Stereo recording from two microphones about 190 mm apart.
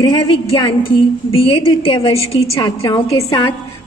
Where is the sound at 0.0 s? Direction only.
25° left (ahead or behind).